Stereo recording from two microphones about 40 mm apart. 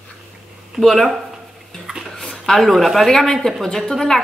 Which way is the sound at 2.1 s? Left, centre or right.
Centre.